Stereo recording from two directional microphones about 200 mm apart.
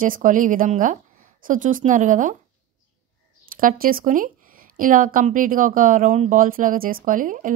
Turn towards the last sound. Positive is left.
turn(degrees=-40)  # may be behind; listen again after turning